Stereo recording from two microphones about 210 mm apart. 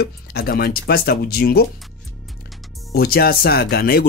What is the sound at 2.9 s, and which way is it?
Speech, 45° left (ahead or behind).